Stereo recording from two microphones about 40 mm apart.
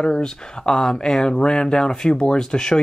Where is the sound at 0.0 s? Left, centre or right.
Centre.